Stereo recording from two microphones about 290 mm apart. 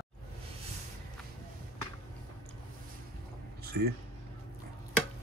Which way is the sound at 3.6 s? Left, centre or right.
Right.